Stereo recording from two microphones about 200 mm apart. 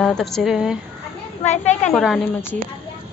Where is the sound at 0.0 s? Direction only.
Centre (ahead or behind).